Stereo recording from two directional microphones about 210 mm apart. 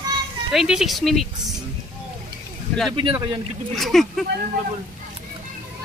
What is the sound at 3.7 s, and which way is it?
Speech, centre (ahead or behind).